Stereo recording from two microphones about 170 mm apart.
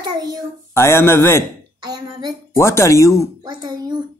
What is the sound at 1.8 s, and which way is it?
Speech, 25° right (ahead or behind).